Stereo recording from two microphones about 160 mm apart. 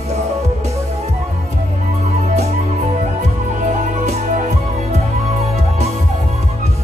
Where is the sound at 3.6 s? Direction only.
50° right (ahead or behind).